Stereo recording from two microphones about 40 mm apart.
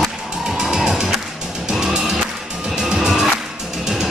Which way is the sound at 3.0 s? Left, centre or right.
Centre.